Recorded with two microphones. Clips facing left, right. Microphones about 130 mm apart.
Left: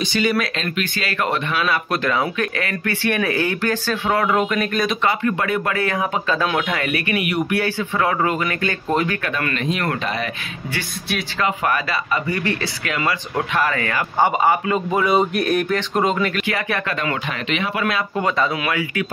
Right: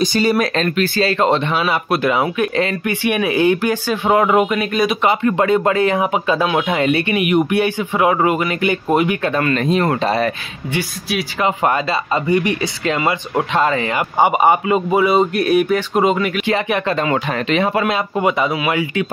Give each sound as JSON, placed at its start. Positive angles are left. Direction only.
{"t": 0.0, "sound": "speech", "side_deg": -40}
{"t": 1.9, "sound": "a man's voice", "side_deg": -15}
{"t": 5.0, "sound": "speech", "side_deg": -25}
{"t": 9.2, "sound": "speech", "side_deg": -30}
{"t": 11.4, "sound": "a man's voice", "side_deg": -25}
{"t": 16.4, "sound": "speech", "side_deg": -20}
{"t": 16.9, "sound": "speech", "side_deg": -35}